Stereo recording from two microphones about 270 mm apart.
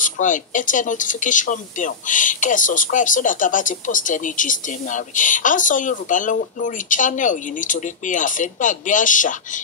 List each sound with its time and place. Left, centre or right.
0.0 s speech: left